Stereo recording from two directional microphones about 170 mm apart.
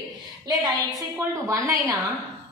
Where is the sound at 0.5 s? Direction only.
25° right (ahead or behind).